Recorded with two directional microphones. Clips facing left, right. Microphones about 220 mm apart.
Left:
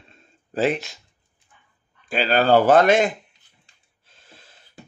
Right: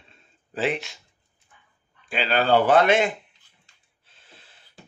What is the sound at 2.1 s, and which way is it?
Speech, 40° left (ahead or behind).